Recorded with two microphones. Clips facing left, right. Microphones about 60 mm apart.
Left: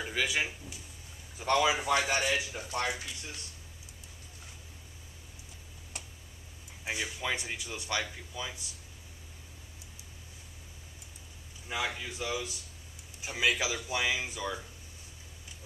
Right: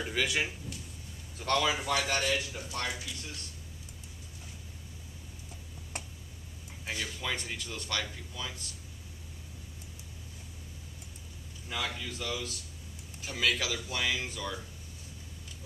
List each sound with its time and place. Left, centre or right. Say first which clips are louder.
0.0 s speech: even; centre
5.9 s tick: right 4 dB; right
6.8 s speech: left 2 dB; centre
11.7 s speech: left 1 dB; centre